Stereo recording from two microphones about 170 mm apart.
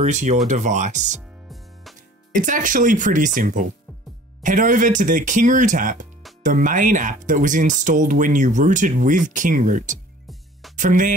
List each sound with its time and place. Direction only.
0.0 s speech: 45° right (ahead or behind)
2.3 s speech: 50° right (ahead or behind)